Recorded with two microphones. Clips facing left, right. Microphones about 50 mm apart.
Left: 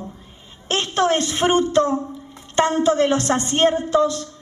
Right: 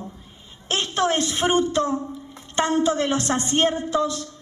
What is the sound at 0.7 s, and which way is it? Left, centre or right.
A woman's voice, left.